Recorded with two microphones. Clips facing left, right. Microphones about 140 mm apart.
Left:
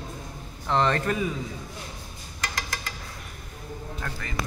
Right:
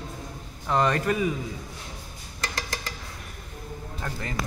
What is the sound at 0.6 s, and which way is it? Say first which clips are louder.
Speech: even; 10° right (ahead or behind).